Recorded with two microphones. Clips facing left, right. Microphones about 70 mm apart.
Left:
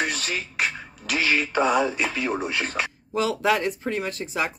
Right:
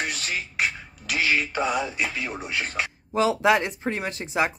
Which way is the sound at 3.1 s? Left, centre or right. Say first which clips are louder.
Right 3 dB; right.